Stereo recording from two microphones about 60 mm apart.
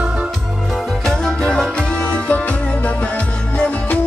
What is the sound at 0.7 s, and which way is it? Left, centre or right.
Music, centre.